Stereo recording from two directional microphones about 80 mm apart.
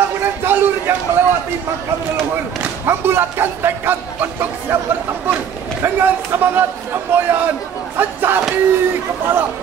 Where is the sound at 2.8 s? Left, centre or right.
Right.